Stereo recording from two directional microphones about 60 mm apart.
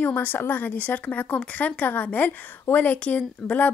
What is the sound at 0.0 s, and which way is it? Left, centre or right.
Speech, left.